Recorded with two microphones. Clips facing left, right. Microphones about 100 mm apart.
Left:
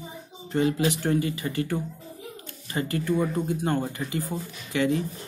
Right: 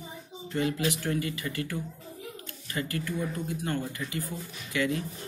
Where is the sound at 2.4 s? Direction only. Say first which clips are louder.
Left 5 dB; 30° left (ahead or behind).